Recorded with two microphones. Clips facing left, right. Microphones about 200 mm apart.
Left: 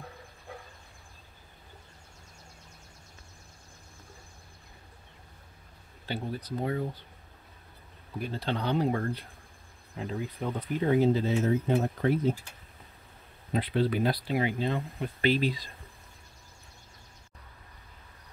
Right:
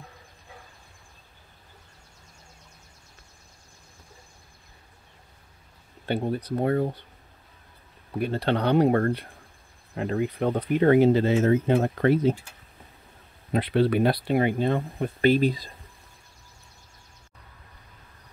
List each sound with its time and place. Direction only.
6.0 s speech: 60° right (ahead or behind)
8.2 s speech: 70° right (ahead or behind)
13.5 s speech: 70° right (ahead or behind); by 15.6 s 50° right (ahead or behind)